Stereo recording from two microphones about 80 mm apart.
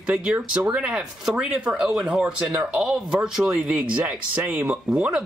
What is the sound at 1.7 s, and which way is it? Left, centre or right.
Speech, centre.